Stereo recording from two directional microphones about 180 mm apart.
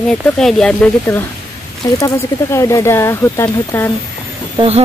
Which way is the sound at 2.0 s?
20° left (ahead or behind).